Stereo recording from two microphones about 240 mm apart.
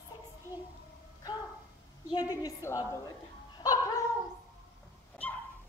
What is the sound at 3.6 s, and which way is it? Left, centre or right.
Cat, centre.